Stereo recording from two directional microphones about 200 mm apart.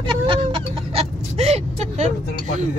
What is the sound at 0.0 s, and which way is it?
Chicken, 25° right (ahead or behind).